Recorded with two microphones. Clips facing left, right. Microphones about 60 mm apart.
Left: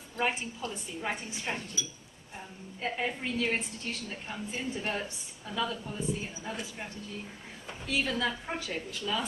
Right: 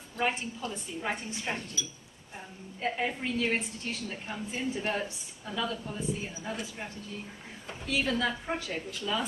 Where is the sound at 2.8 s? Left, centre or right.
Centre.